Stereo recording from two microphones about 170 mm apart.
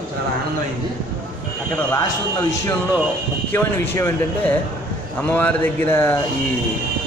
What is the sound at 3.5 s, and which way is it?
Speech, 15° left (ahead or behind).